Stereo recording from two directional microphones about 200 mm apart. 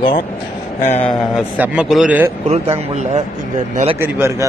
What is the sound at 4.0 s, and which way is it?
Speech, 10° right (ahead or behind).